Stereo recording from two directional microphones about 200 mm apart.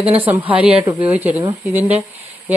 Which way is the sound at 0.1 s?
10° right (ahead or behind).